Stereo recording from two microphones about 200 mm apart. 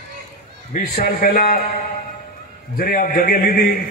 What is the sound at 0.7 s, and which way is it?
Speech, 50° left (ahead or behind).